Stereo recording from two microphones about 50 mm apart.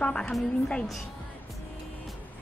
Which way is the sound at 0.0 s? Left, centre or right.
Centre.